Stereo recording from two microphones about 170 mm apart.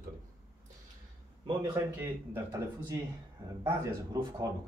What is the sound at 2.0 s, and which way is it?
Speech, 15° right (ahead or behind).